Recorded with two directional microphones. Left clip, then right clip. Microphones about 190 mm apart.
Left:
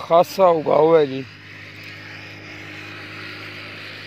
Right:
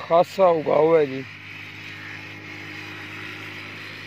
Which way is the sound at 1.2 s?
55° right (ahead or behind).